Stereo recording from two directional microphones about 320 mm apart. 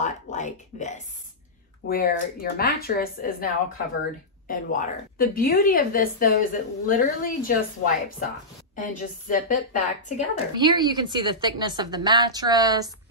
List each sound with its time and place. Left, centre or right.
0.0 s a sound: left
1.9 s a woman's voice: left
10.5 s a woman's voice: centre